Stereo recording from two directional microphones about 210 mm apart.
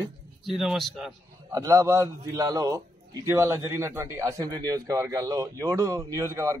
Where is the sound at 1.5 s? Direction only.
15° right (ahead or behind).